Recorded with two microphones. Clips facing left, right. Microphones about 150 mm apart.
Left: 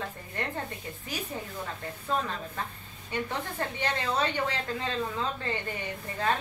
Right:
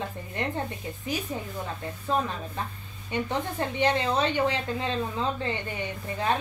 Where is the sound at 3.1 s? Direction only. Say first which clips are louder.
Right 4 dB; 20° right (ahead or behind).